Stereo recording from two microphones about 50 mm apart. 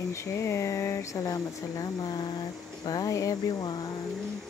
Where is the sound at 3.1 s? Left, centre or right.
Left.